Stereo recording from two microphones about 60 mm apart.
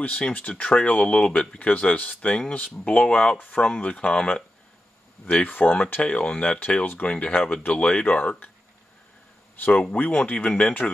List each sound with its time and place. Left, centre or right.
0.2 s speech: left
3.3 s speech: left
3.6 s speech: centre
6.0 s speech: centre
9.6 s speech: left